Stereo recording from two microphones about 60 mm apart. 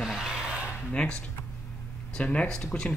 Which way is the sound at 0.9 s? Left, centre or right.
Centre.